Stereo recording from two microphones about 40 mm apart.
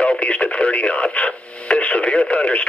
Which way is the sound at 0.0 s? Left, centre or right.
Left.